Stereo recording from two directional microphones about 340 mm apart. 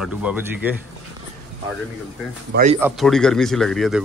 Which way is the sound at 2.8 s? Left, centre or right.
Centre.